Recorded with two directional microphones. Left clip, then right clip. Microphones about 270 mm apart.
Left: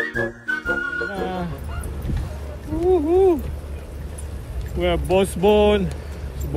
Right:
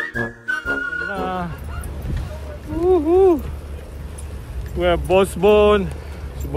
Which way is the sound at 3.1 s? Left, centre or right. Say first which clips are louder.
Right 3 dB; right.